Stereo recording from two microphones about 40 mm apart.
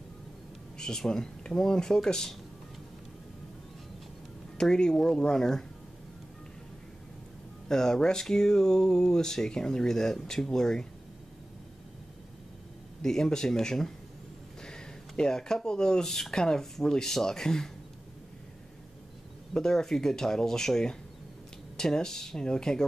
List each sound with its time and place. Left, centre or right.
0.7 s speech: centre
4.6 s speech: centre
7.6 s speech: centre
13.0 s speech: centre
14.6 s a sound: centre
16.1 s speech: centre
16.3 s speech: centre
19.5 s speech: centre